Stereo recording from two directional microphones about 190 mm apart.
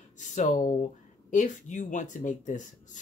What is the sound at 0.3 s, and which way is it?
Speech, 40° left (ahead or behind).